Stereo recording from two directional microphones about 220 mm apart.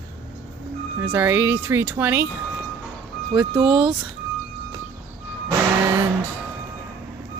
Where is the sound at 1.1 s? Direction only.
10° right (ahead or behind).